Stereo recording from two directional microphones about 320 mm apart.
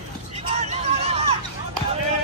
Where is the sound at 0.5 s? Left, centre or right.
Right.